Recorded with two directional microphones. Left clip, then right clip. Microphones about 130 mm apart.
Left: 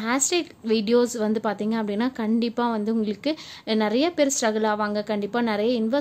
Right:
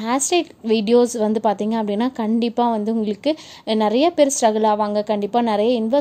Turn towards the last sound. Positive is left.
turn(degrees=-15)  # may be behind; listen again after turning